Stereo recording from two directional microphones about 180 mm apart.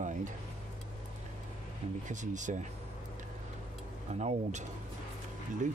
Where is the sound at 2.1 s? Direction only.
45° right (ahead or behind).